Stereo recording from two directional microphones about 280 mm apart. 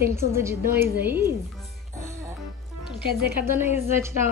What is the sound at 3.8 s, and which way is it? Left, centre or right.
Speech, centre.